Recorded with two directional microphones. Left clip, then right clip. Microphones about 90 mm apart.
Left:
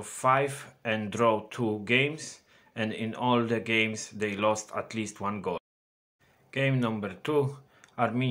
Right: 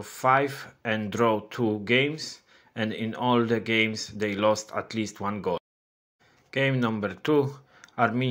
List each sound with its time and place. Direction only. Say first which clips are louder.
0.0 s speech: right 3 dB; 30° right (ahead or behind)
6.7 s speech: right 3 dB; 20° right (ahead or behind)
7.0 s speech: right 4 dB; 30° right (ahead or behind)
7.8 s a sound: right 4 dB; 35° right (ahead or behind)